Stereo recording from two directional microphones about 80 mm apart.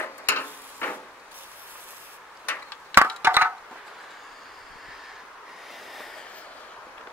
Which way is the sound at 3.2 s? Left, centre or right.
Right.